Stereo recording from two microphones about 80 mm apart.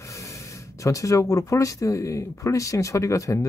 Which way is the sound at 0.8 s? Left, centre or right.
Left.